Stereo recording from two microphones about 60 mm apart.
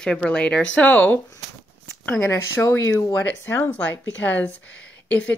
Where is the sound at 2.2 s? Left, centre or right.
Left.